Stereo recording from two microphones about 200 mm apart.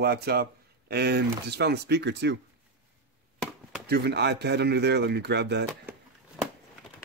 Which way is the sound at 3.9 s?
55° right (ahead or behind).